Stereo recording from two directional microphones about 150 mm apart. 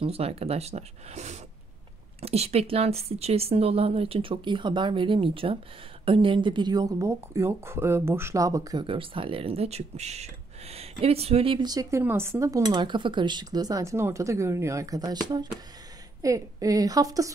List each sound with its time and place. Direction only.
0.0 s speech: 40° right (ahead or behind); by 17.3 s 25° right (ahead or behind)